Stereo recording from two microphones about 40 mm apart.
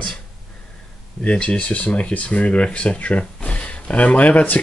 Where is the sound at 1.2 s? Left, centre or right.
Left.